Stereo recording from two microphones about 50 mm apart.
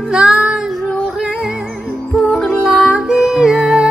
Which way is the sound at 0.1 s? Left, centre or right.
Centre.